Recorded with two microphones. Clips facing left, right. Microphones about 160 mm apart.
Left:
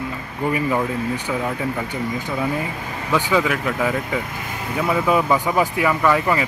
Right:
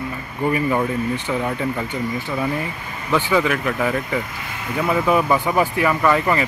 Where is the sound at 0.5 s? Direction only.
15° left (ahead or behind).